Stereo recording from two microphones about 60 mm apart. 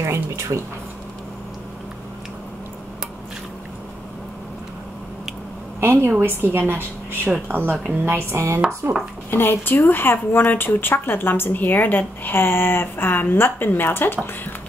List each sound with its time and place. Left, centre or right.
0.0 s speech: right
5.8 s a woman's voice: right
9.3 s speech: left